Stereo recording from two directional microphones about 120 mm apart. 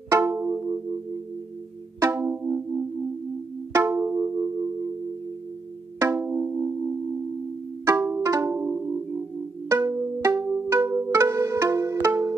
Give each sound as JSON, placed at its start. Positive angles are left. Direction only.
{"t": 0.1, "sound": "music", "side_deg": -25}
{"t": 2.0, "sound": "music", "side_deg": -20}
{"t": 5.9, "sound": "music", "side_deg": -20}
{"t": 7.8, "sound": "pizzicato", "side_deg": -25}